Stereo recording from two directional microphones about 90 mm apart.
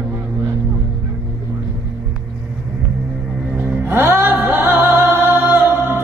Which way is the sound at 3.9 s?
25° right (ahead or behind).